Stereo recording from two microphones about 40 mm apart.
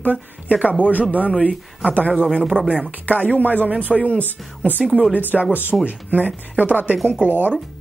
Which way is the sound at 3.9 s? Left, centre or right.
Left.